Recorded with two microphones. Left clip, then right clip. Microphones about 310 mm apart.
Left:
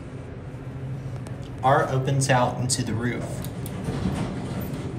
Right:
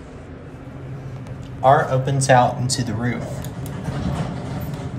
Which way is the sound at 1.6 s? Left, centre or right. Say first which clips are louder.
Right 5 dB; centre.